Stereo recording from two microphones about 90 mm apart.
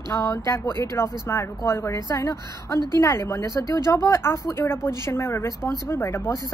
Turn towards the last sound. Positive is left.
turn(degrees=30)  # may be behind; listen again after turning